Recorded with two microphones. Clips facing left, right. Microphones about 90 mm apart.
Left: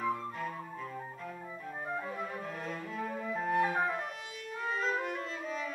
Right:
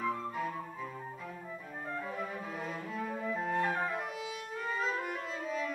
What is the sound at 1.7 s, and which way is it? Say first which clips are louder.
Music: left 3 dB; 10° left (ahead or behind).